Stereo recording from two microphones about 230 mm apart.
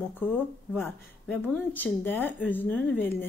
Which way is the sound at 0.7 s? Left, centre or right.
Centre.